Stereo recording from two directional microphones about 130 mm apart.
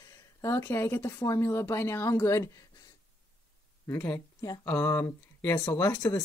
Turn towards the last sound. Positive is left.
turn(degrees=25)  # may be behind; listen again after turning